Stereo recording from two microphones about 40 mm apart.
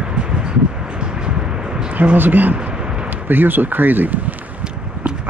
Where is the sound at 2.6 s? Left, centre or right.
Right.